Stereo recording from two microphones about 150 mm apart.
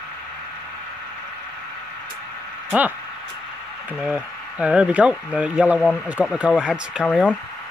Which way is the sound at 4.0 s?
5° right (ahead or behind).